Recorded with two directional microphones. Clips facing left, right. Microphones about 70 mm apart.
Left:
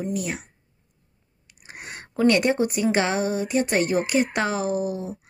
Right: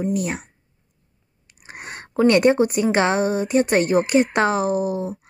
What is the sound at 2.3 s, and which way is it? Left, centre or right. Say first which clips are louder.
Speech: right 6 dB; right.